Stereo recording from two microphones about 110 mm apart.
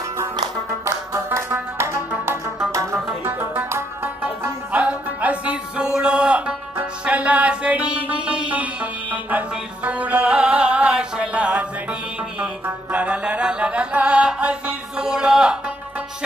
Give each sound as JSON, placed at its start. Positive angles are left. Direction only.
{"t": 0.8, "sound": "music", "side_deg": -25}
{"t": 3.1, "sound": "music", "side_deg": -15}
{"t": 9.8, "sound": "music", "side_deg": -15}